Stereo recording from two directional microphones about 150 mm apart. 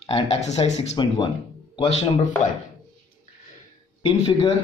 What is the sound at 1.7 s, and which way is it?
Speech, 35° left (ahead or behind).